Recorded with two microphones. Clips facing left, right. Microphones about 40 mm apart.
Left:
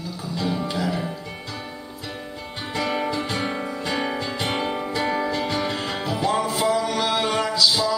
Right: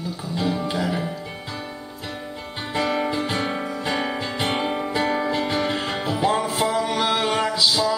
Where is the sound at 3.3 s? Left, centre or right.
Centre.